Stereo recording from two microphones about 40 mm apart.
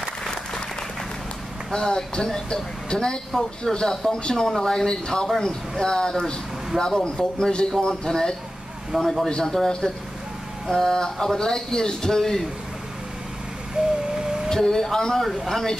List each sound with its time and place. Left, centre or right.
1.7 s a man's voice: centre
9.7 s a man's voice: centre
13.8 s vehicle: centre
14.5 s a man's voice: centre